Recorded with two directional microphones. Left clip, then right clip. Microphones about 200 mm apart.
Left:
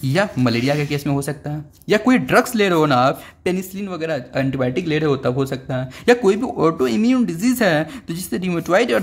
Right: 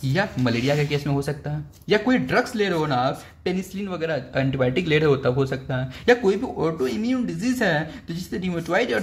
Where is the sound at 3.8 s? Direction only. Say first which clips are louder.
Left 2 dB; 15° left (ahead or behind).